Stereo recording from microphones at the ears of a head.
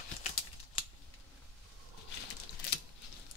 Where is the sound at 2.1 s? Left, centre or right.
Left.